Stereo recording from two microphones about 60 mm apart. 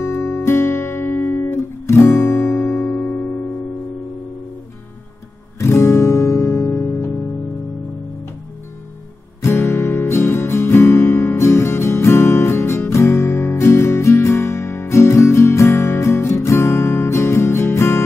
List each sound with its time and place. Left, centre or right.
0.0 s music: left
0.5 s guitar: left
1.9 s guitar: left
3.0 s music: left
5.6 s music: left
9.4 s music: left